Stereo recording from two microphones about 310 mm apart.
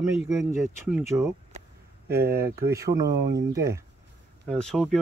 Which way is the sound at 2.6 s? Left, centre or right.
Centre.